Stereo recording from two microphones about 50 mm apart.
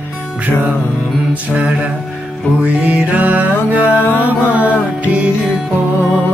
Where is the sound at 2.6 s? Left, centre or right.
Right.